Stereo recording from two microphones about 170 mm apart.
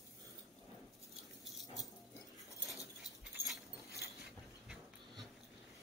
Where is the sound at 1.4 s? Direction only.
Centre (ahead or behind).